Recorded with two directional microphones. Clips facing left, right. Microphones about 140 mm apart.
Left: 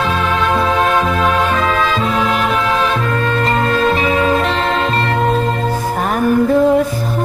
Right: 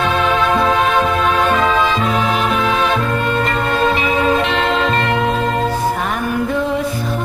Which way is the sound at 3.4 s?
35° left (ahead or behind).